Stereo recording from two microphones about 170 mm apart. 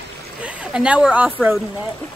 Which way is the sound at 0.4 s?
5° right (ahead or behind).